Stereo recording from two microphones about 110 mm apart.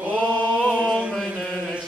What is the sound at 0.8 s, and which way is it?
Chant, 10° left (ahead or behind).